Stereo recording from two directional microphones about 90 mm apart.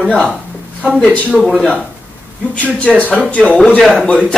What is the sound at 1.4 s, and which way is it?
Speech, centre (ahead or behind).